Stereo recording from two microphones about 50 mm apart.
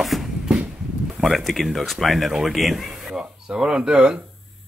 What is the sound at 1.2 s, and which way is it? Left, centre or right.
Speech, centre.